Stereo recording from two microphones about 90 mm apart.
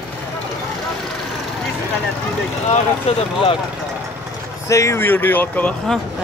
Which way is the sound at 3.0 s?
85° left.